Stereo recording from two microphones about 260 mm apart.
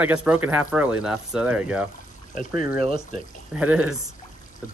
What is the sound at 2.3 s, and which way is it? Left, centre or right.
Speech, left.